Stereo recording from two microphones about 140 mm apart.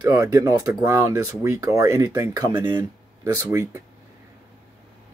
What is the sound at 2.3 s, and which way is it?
Speech, 30° right (ahead or behind).